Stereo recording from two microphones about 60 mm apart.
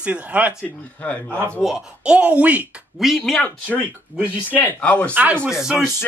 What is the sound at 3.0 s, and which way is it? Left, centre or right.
Speech, centre.